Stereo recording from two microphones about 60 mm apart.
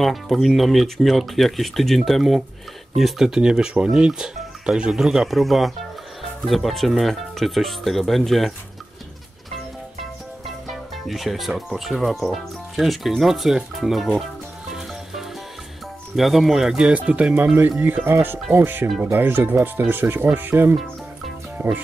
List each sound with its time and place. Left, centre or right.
0.0 s speech: centre
10.4 s speech: centre
16.2 s speech: centre
16.9 s speech: right
17.6 s speech: right